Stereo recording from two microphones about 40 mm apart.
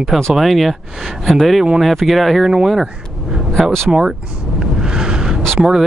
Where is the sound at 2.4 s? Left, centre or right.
Centre.